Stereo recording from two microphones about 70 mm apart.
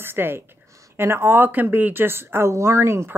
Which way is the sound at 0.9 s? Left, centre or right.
Right.